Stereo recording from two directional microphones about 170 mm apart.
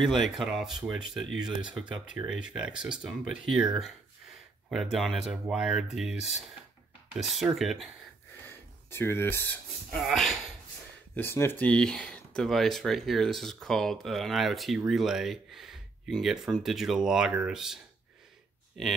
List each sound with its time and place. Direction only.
0.0 s speech: centre (ahead or behind)
4.6 s speech: centre (ahead or behind)
8.9 s speech: 15° left (ahead or behind)
11.1 s speech: 15° left (ahead or behind); by 17.7 s 5° right (ahead or behind)
18.8 s speech: centre (ahead or behind)